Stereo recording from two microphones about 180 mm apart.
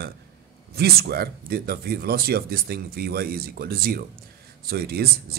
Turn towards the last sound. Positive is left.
turn(degrees=-60)  # may be behind; listen again after turning